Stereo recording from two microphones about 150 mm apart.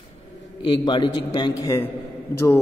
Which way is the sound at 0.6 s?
30° left (ahead or behind).